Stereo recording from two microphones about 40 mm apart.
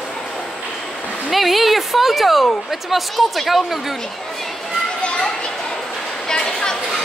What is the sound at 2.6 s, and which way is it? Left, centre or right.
Speech, centre.